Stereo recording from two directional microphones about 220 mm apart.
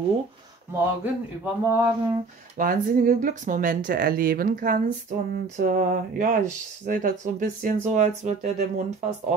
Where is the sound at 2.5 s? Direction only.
35° right (ahead or behind).